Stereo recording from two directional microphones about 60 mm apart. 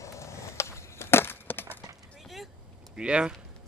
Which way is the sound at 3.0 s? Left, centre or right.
Centre.